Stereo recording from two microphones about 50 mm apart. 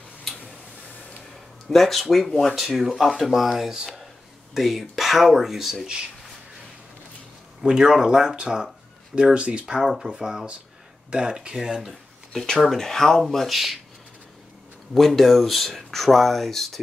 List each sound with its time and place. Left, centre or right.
1.3 s speech: centre
7.6 s speech: centre
12.3 s speech: centre
15.0 s speech: centre